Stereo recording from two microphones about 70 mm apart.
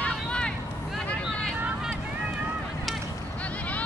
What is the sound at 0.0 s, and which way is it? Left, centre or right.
Vehicle, centre.